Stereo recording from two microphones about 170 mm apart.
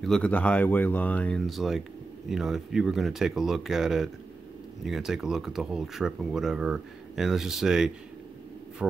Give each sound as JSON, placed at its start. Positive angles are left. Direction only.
{"t": 0.0, "sound": "speech", "side_deg": 5}